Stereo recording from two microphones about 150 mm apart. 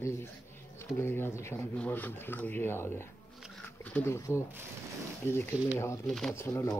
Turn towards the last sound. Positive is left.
turn(degrees=20)  # may be behind; listen again after turning